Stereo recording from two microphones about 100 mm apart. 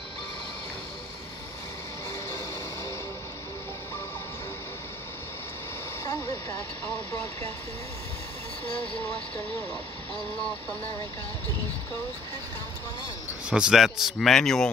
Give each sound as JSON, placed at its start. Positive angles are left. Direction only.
{"t": 2.2, "sound": "music", "side_deg": 30}
{"t": 13.5, "sound": "speech", "side_deg": -5}